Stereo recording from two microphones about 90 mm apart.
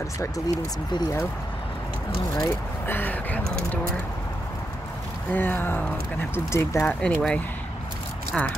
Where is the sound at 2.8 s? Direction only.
20° left (ahead or behind).